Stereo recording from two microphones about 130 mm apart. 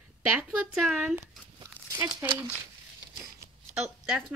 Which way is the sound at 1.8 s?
15° left (ahead or behind).